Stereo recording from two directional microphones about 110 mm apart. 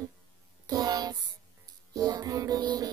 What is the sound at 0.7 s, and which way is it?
Music, 35° right (ahead or behind).